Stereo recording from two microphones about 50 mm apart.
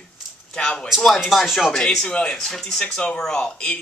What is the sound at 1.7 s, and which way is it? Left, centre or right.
Speech, centre.